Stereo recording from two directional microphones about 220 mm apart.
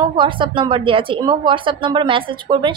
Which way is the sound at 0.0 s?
20° right (ahead or behind).